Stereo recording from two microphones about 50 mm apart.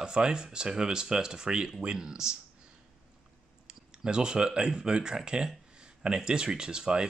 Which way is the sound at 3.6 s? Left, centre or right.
Centre.